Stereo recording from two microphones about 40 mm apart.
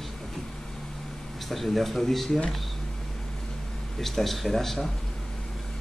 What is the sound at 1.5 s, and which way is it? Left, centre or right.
Speech, centre.